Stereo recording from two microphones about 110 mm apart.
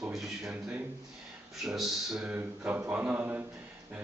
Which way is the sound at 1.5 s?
Centre (ahead or behind).